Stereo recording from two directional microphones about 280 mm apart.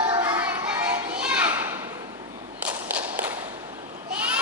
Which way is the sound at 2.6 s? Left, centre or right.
Centre.